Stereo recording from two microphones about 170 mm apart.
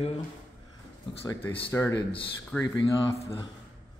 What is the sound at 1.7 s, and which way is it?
Speech, 15° left (ahead or behind).